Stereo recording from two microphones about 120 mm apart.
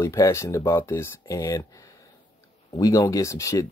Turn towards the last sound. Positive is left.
turn(degrees=25)  # may be behind; listen again after turning